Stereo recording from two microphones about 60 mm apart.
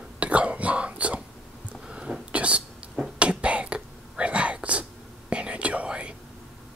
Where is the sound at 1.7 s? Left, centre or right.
Centre.